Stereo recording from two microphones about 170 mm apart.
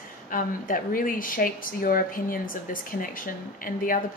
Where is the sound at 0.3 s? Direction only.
55° left (ahead or behind).